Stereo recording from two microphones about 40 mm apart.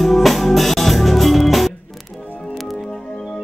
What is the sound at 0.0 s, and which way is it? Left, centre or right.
Music, centre.